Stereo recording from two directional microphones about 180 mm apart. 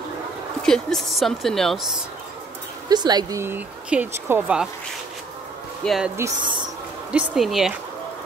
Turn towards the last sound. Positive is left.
turn(degrees=0)  # may be behind; listen again after turning